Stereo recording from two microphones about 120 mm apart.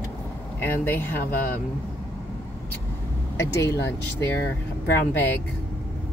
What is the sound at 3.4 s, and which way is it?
Speech, 25° left (ahead or behind).